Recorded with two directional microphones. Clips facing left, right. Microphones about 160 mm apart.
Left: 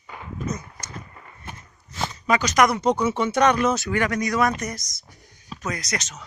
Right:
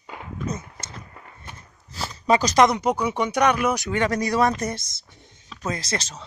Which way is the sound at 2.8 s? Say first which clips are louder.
Left 2 dB; 10° right (ahead or behind).